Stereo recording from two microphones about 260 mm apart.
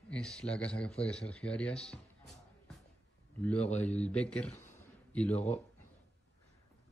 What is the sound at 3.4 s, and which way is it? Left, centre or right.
A man's voice, centre.